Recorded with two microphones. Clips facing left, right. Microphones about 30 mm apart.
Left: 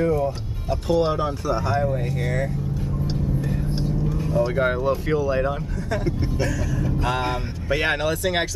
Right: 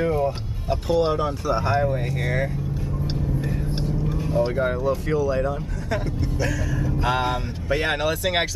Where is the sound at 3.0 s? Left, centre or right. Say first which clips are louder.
Left 1 dB; right.